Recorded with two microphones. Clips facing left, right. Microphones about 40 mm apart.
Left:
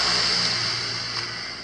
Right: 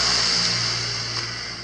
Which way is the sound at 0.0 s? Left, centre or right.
Centre.